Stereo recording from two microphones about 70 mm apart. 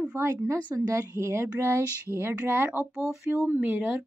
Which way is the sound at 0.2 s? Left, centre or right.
Right.